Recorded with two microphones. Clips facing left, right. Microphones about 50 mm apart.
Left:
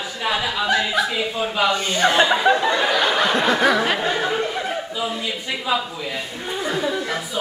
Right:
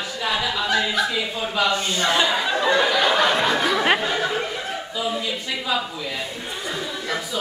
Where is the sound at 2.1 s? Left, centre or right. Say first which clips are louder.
Left 5 dB; centre.